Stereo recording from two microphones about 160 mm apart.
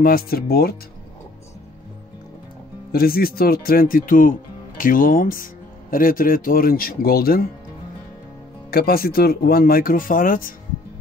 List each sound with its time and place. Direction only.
0.0 s speech: 70° left (ahead or behind)
2.9 s speech: 70° left (ahead or behind)
8.6 s speech: 70° left (ahead or behind)